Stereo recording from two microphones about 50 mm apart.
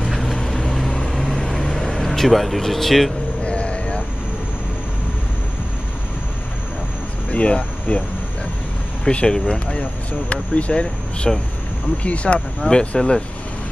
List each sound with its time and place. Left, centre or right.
0.1 s vehicle: centre
3.4 s vehicle: left
7.2 s a sound: left
9.0 s speech: centre